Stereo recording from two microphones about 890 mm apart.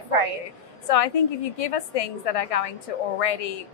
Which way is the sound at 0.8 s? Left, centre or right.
Left.